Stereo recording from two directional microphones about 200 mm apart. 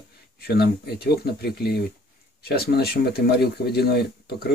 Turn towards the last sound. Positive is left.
turn(degrees=50)  # may be behind; listen again after turning